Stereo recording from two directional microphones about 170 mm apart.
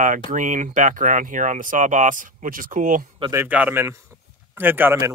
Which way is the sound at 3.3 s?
10° right (ahead or behind).